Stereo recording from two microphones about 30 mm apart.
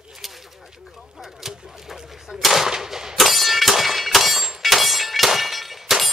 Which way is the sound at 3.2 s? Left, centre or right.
Centre.